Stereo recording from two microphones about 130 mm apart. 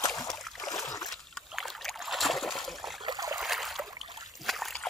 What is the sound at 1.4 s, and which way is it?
Rowboat, centre (ahead or behind).